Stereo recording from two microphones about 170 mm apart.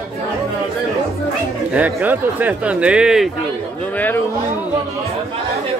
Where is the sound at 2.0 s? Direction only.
10° right (ahead or behind).